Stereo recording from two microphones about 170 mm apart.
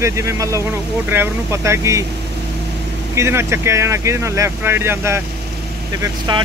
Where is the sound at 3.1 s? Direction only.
15° right (ahead or behind).